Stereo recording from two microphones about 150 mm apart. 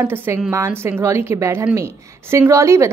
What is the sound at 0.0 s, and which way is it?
A woman's voice, 15° right (ahead or behind).